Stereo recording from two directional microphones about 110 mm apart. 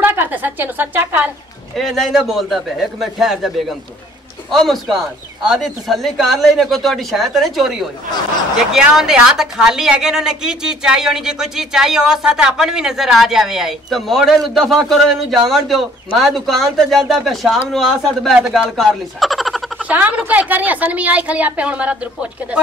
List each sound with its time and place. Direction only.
0.0 s a woman's voice: 20° right (ahead or behind)
1.8 s a woman's voice: centre (ahead or behind)
19.8 s a woman's voice: 15° right (ahead or behind)